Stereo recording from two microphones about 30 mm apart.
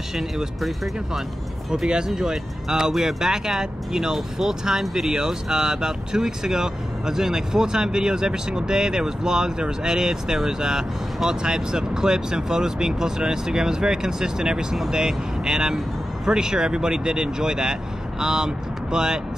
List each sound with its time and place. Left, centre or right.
0.6 s speech: centre
1.7 s speech: right
2.9 s speech: centre; by 19.2 s right